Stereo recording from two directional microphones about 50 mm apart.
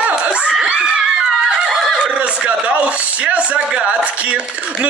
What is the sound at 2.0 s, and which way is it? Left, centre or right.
Speech, right.